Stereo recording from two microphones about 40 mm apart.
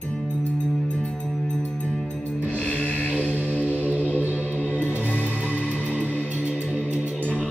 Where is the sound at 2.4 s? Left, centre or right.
Left.